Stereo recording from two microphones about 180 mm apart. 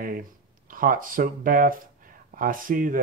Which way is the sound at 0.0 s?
50° right (ahead or behind).